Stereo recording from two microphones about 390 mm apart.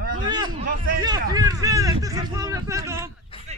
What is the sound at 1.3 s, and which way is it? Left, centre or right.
Speech, centre.